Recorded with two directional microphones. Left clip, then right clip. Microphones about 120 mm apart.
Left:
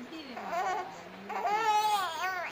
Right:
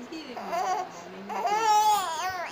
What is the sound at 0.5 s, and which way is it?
Laughter, 20° right (ahead or behind).